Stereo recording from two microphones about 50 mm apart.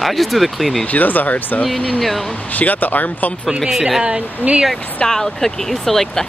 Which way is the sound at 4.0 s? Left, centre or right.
Centre.